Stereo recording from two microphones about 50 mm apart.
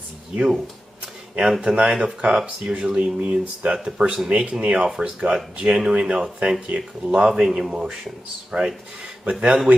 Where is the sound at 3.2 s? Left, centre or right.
Right.